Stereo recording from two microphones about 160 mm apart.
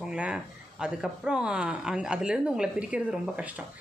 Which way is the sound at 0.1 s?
5° right (ahead or behind).